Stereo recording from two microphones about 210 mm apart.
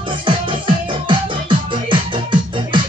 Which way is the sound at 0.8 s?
25° right (ahead or behind).